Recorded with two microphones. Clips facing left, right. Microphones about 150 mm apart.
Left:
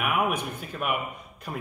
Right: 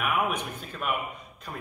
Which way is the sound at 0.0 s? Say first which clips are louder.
Left 2 dB; 10° left (ahead or behind).